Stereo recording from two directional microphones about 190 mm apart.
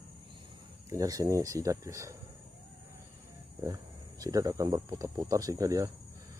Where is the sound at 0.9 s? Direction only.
15° right (ahead or behind).